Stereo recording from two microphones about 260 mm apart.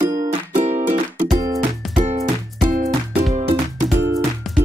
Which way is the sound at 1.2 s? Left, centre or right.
Centre.